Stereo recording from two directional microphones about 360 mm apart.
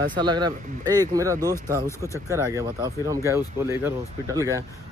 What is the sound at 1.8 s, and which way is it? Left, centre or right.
Speech, centre.